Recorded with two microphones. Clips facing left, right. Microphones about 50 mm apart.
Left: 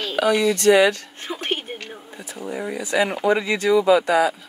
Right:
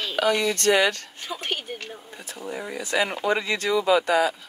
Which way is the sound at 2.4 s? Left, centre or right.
Left.